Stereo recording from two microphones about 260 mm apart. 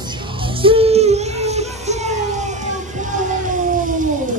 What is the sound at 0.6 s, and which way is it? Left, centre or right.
Music, right.